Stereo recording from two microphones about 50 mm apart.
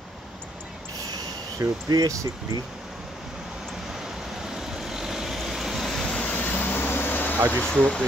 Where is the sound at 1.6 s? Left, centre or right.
Right.